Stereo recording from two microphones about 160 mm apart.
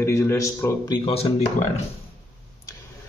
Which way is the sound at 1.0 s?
40° left (ahead or behind).